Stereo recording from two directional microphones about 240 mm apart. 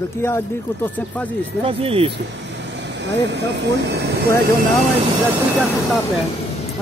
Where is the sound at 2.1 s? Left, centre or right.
Right.